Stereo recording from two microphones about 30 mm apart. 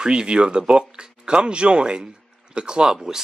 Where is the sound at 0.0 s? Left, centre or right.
Right.